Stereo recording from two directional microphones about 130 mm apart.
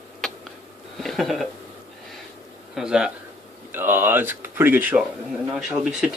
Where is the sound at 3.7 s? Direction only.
15° right (ahead or behind).